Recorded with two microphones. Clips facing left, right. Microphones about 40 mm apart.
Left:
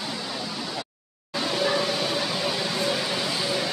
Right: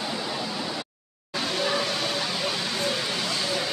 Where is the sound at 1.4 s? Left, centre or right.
Centre.